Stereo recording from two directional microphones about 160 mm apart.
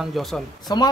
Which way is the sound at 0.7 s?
25° left (ahead or behind).